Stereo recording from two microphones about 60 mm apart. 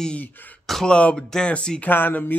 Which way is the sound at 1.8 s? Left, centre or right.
Left.